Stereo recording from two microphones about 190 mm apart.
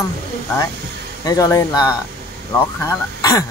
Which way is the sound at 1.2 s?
15° left (ahead or behind).